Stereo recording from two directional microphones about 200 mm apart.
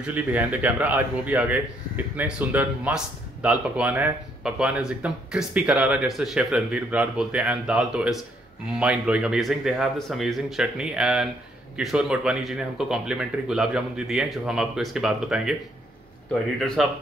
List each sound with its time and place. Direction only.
0.0 s a man's voice: 10° right (ahead or behind)
16.5 s speech: centre (ahead or behind)